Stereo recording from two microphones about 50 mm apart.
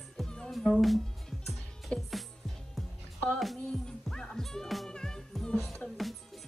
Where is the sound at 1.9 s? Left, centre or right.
Left.